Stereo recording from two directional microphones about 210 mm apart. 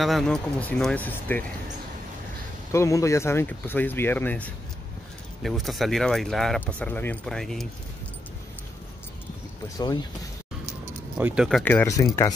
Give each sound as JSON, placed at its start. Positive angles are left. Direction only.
{"t": 0.0, "sound": "speech", "side_deg": 0}
{"t": 2.7, "sound": "speech", "side_deg": 15}
{"t": 9.8, "sound": "speech", "side_deg": 20}
{"t": 11.1, "sound": "speech", "side_deg": -5}